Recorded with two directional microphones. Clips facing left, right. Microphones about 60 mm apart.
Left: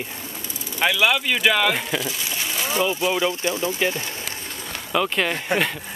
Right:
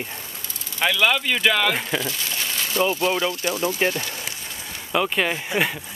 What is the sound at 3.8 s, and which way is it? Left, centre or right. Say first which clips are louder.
Speech: right 1 dB; right.